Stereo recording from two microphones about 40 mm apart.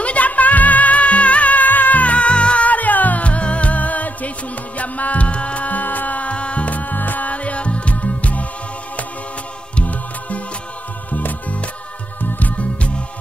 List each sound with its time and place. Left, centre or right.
0.0 s music: left
7.2 s music: left
9.8 s music: left